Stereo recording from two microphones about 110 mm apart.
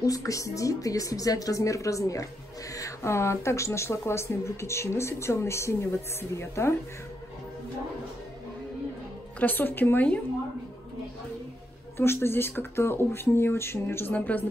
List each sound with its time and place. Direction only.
0.0 s a woman's voice: 30° left (ahead or behind)
9.4 s a woman's voice: 15° left (ahead or behind)
12.0 s speech: 20° left (ahead or behind)